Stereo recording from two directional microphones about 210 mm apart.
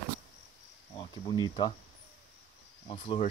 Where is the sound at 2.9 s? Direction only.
25° left (ahead or behind).